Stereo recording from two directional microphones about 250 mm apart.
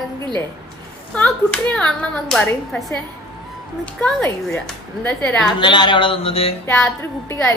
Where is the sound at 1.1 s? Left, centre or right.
Centre.